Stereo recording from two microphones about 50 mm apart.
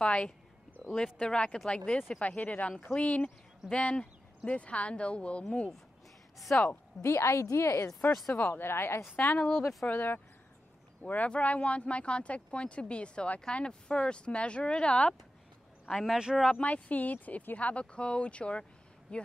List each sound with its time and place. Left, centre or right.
0.0 s speech: left
3.7 s speech: left
7.0 s a woman's voice: left
8.1 s speech: centre
8.4 s speech: left
8.6 s a woman's voice: left
9.4 s speech: centre
9.8 s speech: left; by 15.1 s centre
15.9 s speech: centre
16.5 s speech: left
17.6 s speech: left